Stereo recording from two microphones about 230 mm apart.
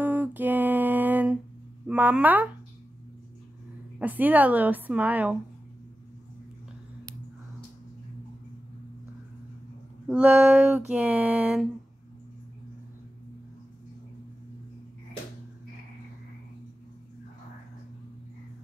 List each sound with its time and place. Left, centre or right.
0.0 s a sound: centre
1.9 s a woman's voice: centre
4.0 s a woman's voice: centre
10.0 s a woman's voice: centre